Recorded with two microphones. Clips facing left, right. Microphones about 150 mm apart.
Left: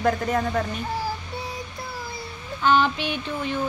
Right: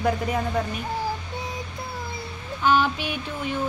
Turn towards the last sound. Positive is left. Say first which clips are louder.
# left 2 dB
turn(degrees=-10)  # may be behind; listen again after turning